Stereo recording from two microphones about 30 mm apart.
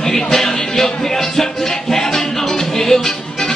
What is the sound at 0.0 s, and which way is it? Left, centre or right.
Music, centre.